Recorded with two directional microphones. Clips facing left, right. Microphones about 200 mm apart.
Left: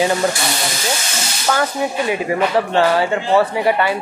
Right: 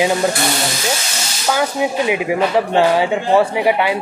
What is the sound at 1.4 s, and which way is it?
Speech, 10° right (ahead or behind).